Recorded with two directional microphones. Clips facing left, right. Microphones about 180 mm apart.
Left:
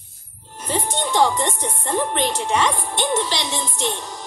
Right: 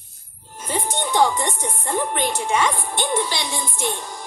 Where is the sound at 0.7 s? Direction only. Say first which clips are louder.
Left 1 dB; 10° right (ahead or behind).